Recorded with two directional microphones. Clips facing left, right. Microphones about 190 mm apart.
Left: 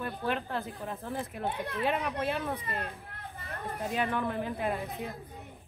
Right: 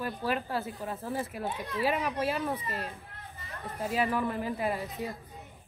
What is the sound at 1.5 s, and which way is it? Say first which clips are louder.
Speech: left 1 dB; 60° left (ahead or behind).